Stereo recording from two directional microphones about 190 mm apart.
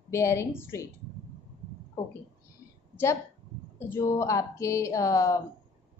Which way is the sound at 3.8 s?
15° left (ahead or behind).